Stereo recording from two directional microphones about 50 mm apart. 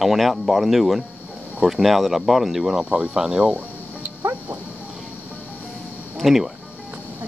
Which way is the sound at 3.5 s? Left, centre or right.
Right.